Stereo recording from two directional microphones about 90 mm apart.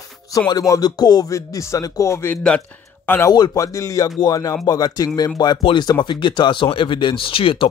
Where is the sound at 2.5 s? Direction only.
10° left (ahead or behind).